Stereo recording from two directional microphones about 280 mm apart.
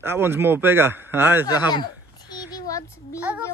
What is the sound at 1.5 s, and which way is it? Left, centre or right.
Speech, centre.